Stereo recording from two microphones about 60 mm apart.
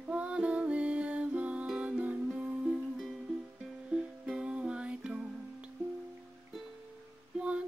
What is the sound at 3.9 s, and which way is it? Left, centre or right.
Music, centre.